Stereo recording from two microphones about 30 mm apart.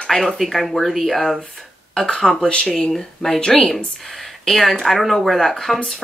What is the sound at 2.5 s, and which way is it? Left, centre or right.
Speech, left.